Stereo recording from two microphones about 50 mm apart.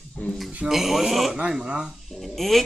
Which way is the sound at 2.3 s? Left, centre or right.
Centre.